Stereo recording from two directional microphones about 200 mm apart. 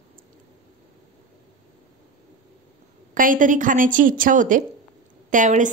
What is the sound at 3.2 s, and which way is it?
A woman's voice, 40° right (ahead or behind).